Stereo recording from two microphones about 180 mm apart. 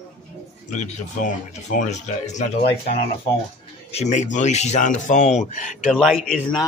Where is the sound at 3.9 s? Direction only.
40° left (ahead or behind).